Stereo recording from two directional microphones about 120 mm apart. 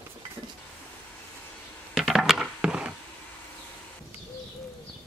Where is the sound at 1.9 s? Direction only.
Centre (ahead or behind).